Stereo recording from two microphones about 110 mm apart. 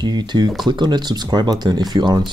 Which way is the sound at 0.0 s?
40° right (ahead or behind).